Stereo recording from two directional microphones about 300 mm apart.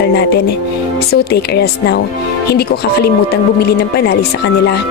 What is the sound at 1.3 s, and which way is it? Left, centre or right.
Speech, left.